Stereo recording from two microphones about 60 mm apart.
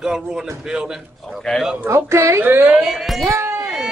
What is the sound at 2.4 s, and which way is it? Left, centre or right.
Speech, right.